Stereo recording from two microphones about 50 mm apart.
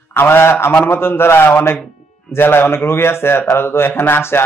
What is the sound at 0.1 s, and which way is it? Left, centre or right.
Speech, left.